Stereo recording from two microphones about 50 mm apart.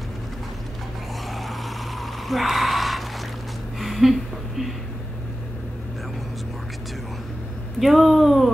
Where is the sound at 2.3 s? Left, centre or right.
Centre.